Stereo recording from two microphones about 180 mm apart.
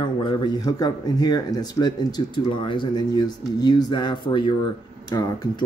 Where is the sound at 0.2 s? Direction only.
25° left (ahead or behind).